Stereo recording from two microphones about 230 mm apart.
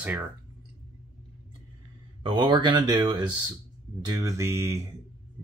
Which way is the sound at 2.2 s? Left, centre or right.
Right.